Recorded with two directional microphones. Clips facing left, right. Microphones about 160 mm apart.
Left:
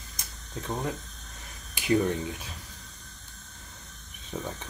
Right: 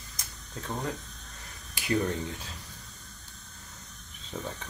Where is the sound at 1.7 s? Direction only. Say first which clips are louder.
Left 4 dB; 20° left (ahead or behind).